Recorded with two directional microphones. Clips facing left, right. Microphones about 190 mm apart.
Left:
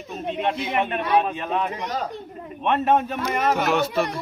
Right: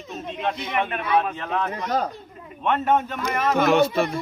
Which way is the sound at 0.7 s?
30° left (ahead or behind).